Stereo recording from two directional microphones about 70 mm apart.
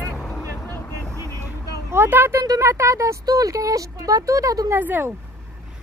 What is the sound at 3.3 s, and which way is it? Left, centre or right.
Speech, right.